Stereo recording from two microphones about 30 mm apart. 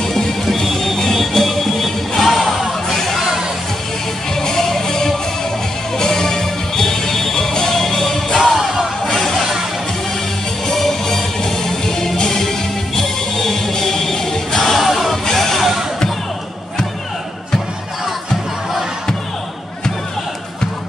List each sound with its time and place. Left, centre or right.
0.6 s music: centre
4.4 s music: centre
8.5 s music: centre
9.0 s music: centre
9.4 s music: centre
10.7 s music: centre
14.8 s music: centre
15.3 s a sound: centre